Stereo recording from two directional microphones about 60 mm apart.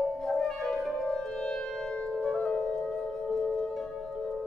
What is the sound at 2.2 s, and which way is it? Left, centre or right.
Music, centre.